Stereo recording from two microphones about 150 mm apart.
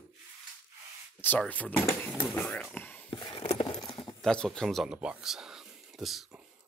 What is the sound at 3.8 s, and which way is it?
Clip-clop, 30° left (ahead or behind).